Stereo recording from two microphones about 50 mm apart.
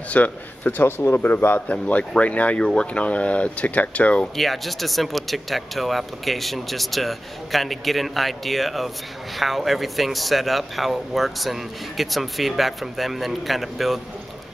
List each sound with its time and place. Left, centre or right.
0.1 s speech: left
0.8 s speech: left
1.7 s speech: left
2.6 s speech: centre
4.4 s speech: centre